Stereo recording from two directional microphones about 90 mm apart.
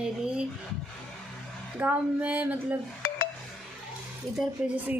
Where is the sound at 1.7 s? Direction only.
20° right (ahead or behind).